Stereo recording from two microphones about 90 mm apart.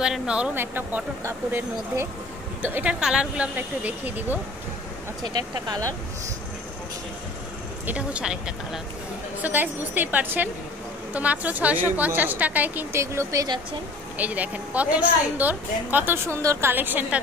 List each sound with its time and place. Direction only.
0.0 s speech: 10° right (ahead or behind)
0.6 s a woman's voice: 25° right (ahead or behind)
5.2 s speech: 50° right (ahead or behind)
7.8 s speech: 15° right (ahead or behind)
9.4 s a woman's voice: 20° right (ahead or behind)
13.0 s speech: 30° right (ahead or behind)
14.1 s a woman's voice: 15° right (ahead or behind)